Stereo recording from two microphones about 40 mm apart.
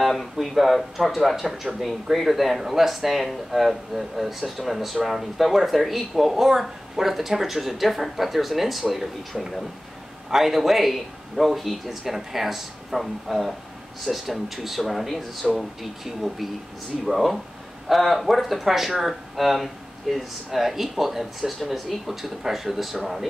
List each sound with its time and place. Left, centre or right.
0.1 s speech: centre